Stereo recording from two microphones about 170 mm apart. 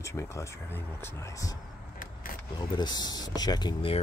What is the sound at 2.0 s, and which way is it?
Vehicle, 55° left (ahead or behind).